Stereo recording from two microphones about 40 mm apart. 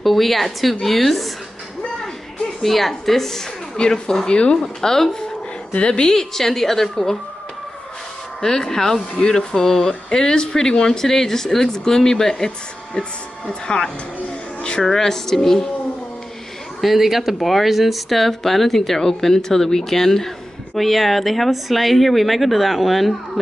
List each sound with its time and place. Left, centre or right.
0.0 s speech: centre
2.6 s speech: centre
4.4 s speech: left
4.8 s speech: centre
5.8 s speech: left
8.4 s speech: centre
9.5 s speech: centre
14.6 s a sound: left
14.9 s speech: centre
16.8 s speech: centre